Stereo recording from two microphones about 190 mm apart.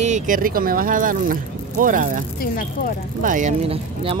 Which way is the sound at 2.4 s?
50° left (ahead or behind).